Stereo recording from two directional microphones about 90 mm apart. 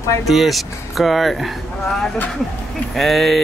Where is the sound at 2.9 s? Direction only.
Centre (ahead or behind).